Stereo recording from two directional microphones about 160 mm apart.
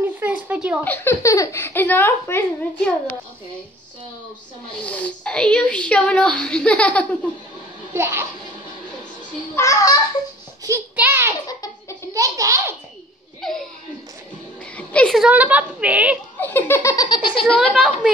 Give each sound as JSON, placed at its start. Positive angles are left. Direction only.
{"t": 0.0, "sound": "a sound", "side_deg": -10}
{"t": 0.8, "sound": "a child's voice", "side_deg": 15}
{"t": 4.8, "sound": "a child's voice", "side_deg": 10}
{"t": 7.9, "sound": "a woman's voice", "side_deg": -15}
{"t": 9.6, "sound": "speech", "side_deg": 20}
{"t": 10.6, "sound": "a sound", "side_deg": -15}
{"t": 11.4, "sound": "baby laughter", "side_deg": 20}
{"t": 12.1, "sound": "a child's voice", "side_deg": -20}
{"t": 13.4, "sound": "chuckle", "side_deg": 5}
{"t": 14.8, "sound": "a sound", "side_deg": 10}
{"t": 15.2, "sound": "a woman's voice", "side_deg": -10}
{"t": 16.3, "sound": "speech", "side_deg": 10}
{"t": 17.7, "sound": "a woman's voice", "side_deg": -5}